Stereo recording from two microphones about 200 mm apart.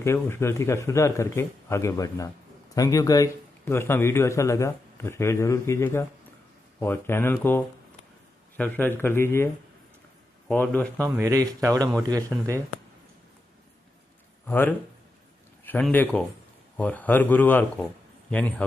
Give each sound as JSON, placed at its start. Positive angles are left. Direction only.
{"t": 0.0, "sound": "speech", "side_deg": 15}
{"t": 10.5, "sound": "speech", "side_deg": 10}
{"t": 11.1, "sound": "speech", "side_deg": -15}
{"t": 14.4, "sound": "speech", "side_deg": 10}